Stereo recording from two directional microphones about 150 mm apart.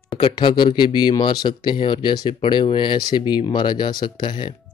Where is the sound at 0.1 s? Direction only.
35° left (ahead or behind).